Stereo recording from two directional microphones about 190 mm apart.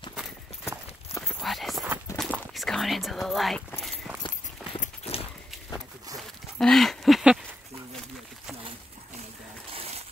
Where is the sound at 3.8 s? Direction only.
Centre (ahead or behind).